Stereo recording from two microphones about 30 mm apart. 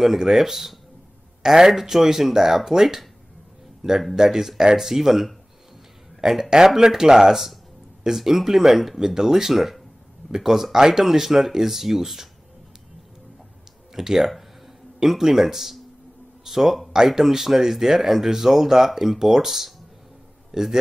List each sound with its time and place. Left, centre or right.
0.0 s speech: centre
4.1 s speech: centre
13.9 s speech: centre
16.9 s speech: centre